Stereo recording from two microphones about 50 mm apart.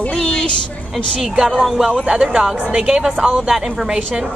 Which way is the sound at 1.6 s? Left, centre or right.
Centre.